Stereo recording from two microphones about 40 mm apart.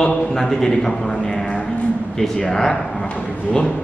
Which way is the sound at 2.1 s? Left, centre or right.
Centre.